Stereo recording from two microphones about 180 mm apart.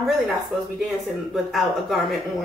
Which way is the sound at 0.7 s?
Centre (ahead or behind).